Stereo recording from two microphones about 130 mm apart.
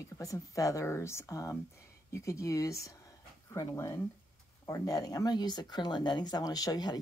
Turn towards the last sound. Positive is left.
turn(degrees=30)  # may be behind; listen again after turning